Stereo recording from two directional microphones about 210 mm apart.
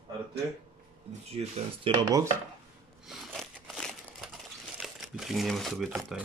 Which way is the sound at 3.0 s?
Centre (ahead or behind).